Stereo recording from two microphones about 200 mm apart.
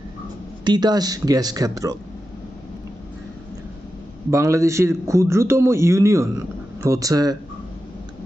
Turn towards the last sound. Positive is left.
turn(degrees=-20)  # may be behind; listen again after turning